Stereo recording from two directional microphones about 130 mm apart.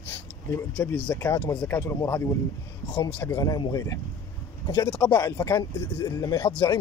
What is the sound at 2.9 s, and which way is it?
Speech, 40° left (ahead or behind).